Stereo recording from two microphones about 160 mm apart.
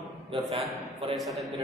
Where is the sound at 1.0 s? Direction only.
35° right (ahead or behind).